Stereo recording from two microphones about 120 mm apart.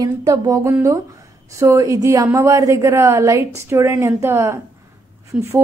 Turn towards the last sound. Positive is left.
turn(degrees=-25)  # may be behind; listen again after turning